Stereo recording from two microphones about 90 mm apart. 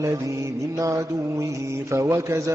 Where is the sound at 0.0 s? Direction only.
35° right (ahead or behind).